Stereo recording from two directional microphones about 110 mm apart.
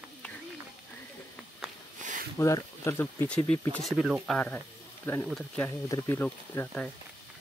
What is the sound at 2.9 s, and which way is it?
Speech, 20° left (ahead or behind).